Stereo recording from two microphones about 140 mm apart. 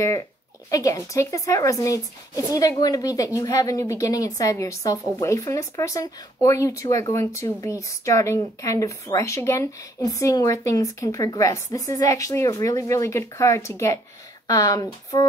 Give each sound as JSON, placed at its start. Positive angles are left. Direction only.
{"t": 0.7, "sound": "a woman's voice", "side_deg": 25}